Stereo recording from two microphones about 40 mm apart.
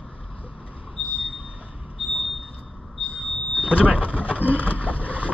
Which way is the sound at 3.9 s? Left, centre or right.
Right.